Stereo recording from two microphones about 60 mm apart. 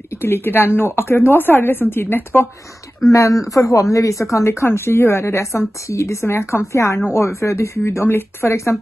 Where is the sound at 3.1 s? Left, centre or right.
Left.